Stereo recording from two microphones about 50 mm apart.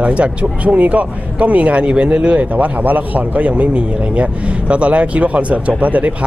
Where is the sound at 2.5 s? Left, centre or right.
Right.